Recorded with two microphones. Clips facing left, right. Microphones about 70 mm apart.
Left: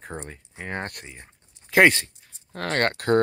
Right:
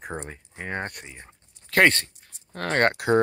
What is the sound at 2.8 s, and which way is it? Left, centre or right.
Speech, centre.